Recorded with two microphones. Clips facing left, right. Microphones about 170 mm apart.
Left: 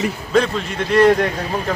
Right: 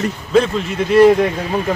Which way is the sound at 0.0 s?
Centre (ahead or behind).